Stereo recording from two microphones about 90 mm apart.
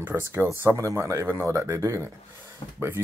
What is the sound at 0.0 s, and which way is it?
Speech, 30° right (ahead or behind).